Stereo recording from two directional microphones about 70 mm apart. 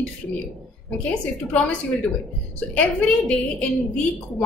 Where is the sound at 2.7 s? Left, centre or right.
Centre.